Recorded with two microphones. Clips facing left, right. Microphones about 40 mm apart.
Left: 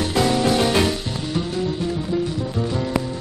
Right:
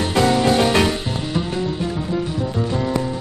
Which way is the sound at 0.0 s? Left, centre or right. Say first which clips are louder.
Right 2 dB; right.